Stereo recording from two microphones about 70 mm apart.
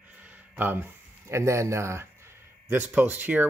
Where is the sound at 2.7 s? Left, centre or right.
Right.